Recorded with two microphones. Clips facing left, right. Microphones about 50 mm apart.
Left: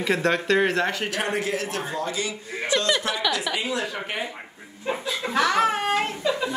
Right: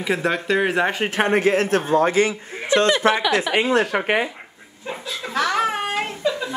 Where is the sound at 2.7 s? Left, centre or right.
Right.